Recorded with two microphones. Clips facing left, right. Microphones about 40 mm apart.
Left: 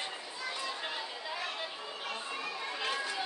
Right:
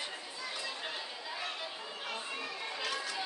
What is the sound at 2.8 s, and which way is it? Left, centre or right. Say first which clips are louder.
Chatter: left 3 dB; left.